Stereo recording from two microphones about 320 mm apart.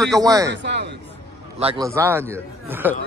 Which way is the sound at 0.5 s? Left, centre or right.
Right.